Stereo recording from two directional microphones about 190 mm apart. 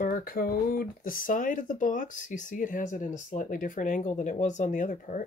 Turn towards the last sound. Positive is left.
turn(degrees=40)  # may be behind; listen again after turning